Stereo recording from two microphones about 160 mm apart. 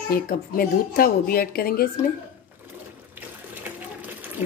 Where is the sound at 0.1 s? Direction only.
70° left (ahead or behind).